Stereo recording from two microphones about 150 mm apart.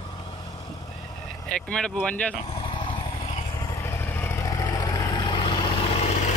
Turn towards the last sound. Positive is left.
turn(degrees=35)  # may be behind; listen again after turning